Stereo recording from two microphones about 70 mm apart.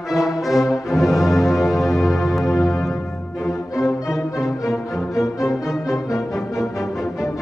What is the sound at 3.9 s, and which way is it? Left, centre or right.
Music, left.